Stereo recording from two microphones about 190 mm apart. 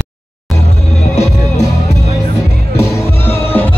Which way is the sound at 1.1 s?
35° left (ahead or behind).